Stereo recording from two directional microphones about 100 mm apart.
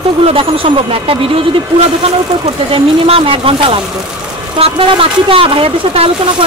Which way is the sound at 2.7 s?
70° right (ahead or behind).